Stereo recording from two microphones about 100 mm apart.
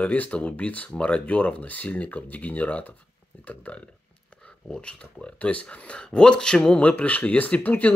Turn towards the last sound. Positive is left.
turn(degrees=15)  # may be behind; listen again after turning